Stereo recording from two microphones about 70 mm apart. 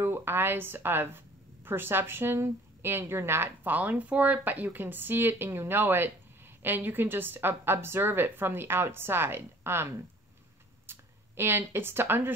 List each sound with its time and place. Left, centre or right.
0.0 s a woman's voice: right